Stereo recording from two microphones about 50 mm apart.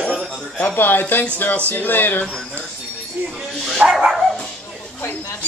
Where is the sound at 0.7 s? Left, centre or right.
Left.